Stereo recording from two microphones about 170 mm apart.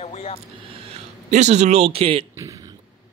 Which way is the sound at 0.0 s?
40° left (ahead or behind).